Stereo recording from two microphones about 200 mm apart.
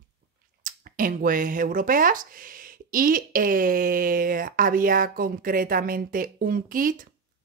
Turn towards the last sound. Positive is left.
turn(degrees=-45)  # may be behind; listen again after turning